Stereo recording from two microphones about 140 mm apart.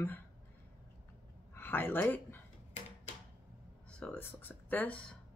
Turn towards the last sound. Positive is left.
turn(degrees=10)  # may be behind; listen again after turning